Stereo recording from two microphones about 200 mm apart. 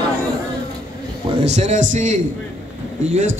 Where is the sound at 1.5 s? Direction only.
35° right (ahead or behind).